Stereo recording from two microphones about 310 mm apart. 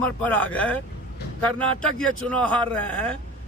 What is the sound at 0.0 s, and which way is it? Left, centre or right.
A man's voice, centre.